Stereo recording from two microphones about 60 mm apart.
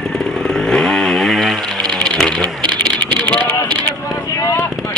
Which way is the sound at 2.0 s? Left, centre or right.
Centre.